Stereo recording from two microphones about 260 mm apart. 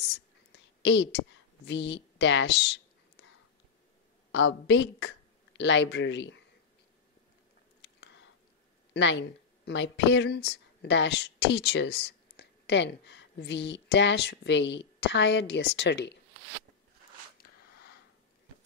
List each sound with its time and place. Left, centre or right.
0.8 s a woman's voice: left
4.3 s speech: left
7.8 s biting: left
8.9 s speech: left